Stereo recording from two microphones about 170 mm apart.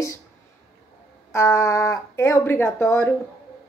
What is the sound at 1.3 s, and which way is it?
Speech, 15° left (ahead or behind).